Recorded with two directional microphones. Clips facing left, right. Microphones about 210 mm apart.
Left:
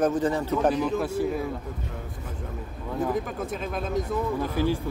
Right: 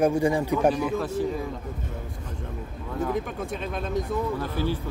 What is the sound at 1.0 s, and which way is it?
Speech, 10° left (ahead or behind).